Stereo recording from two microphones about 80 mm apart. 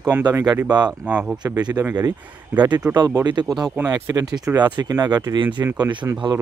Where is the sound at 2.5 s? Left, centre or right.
Right.